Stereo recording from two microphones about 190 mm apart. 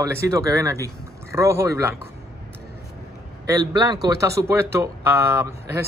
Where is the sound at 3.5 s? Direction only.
20° right (ahead or behind).